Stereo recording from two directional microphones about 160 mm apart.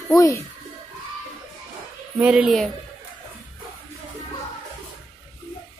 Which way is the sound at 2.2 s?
5° right (ahead or behind).